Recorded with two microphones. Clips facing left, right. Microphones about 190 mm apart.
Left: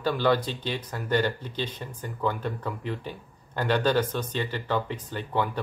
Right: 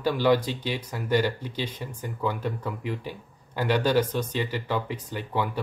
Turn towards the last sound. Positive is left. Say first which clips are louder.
# even
turn(degrees=-10)  # may be behind; listen again after turning